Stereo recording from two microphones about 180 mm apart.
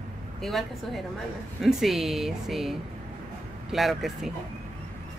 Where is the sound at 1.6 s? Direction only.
Centre (ahead or behind).